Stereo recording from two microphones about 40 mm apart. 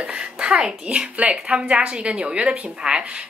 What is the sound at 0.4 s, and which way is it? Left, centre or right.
A child's voice, right.